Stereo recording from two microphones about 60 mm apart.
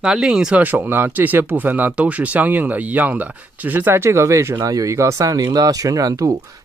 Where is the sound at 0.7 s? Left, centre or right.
Right.